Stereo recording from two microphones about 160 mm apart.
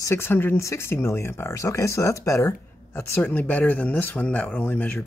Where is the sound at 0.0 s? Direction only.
15° left (ahead or behind).